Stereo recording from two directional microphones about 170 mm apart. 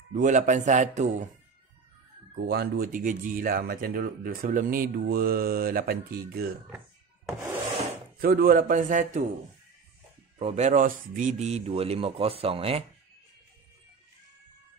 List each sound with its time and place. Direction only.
0.1 s a man's voice: 50° right (ahead or behind)
2.4 s speech: 70° right (ahead or behind)
8.2 s a man's voice: 60° right (ahead or behind)
10.4 s speech: 40° right (ahead or behind)